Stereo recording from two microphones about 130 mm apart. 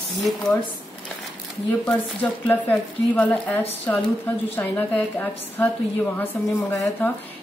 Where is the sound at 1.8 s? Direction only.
10° left (ahead or behind).